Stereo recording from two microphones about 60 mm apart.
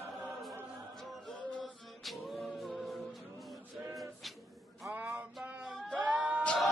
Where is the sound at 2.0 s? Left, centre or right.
Centre.